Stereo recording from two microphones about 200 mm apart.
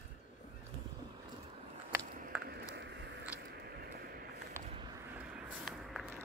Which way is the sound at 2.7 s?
60° right (ahead or behind).